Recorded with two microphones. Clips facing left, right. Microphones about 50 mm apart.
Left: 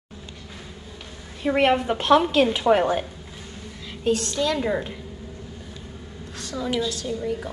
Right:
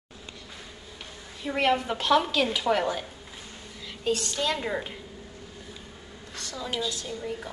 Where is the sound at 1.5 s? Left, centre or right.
Left.